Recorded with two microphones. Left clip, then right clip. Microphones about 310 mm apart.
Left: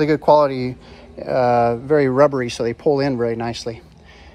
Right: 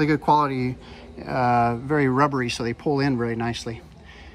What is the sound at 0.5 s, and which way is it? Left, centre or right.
Speech, centre.